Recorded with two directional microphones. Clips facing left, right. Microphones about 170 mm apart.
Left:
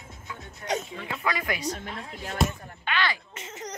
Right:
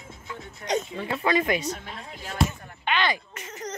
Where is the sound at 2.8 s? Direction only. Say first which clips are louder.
Right 3 dB; 20° right (ahead or behind).